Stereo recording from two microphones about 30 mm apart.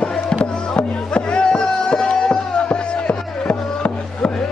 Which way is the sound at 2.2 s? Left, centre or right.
Left.